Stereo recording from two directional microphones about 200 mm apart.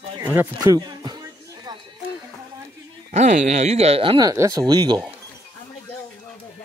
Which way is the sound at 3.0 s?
35° right (ahead or behind).